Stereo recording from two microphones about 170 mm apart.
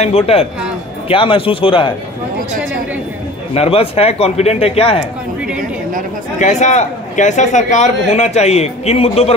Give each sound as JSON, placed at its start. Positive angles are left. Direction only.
{"t": 0.0, "sound": "speech", "side_deg": 35}
{"t": 3.5, "sound": "speech", "side_deg": 35}
{"t": 6.4, "sound": "a man's voice", "side_deg": 45}